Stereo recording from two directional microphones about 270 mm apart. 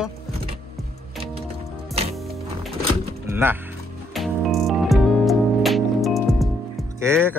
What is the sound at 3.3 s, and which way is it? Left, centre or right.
Music, centre.